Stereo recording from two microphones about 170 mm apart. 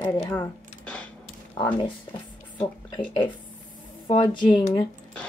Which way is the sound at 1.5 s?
25° left (ahead or behind).